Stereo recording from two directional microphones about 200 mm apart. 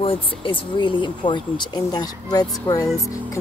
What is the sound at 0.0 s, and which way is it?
Speech, 25° left (ahead or behind).